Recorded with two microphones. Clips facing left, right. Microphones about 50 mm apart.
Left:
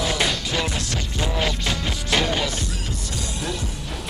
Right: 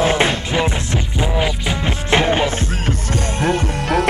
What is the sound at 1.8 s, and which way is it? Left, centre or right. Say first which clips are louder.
Music: right 8 dB; right.